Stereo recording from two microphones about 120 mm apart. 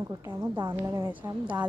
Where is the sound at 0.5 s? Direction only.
35° right (ahead or behind).